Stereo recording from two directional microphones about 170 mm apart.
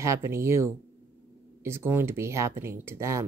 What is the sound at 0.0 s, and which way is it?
Speech, 15° right (ahead or behind).